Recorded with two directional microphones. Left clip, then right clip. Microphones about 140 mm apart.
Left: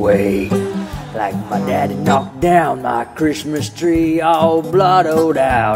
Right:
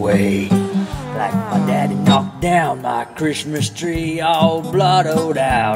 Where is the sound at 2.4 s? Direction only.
35° left (ahead or behind).